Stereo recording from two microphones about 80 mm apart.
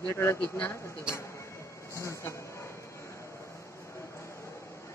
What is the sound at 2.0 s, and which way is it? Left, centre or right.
Speech, left.